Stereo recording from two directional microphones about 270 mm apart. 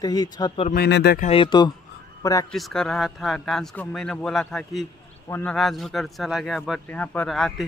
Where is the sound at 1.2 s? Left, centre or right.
Centre.